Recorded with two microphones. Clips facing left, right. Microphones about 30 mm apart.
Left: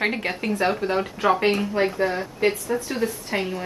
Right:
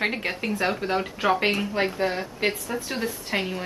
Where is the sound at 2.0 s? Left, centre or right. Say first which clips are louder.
Left 3 dB; right.